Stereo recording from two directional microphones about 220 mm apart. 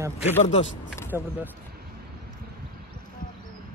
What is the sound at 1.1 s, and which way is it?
Speech, 10° right (ahead or behind).